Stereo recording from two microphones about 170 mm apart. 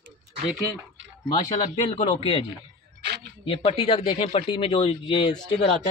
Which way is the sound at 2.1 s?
30° left (ahead or behind).